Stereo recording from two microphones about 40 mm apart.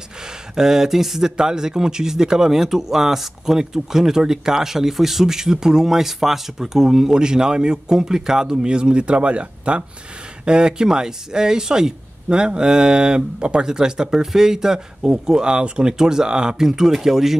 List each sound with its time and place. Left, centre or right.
0.6 s a man's voice: centre
15.9 s a man's voice: centre